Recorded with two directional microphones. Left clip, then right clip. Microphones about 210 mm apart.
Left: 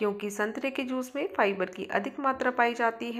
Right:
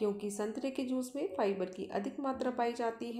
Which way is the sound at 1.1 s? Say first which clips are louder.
Left 8 dB; centre (ahead or behind).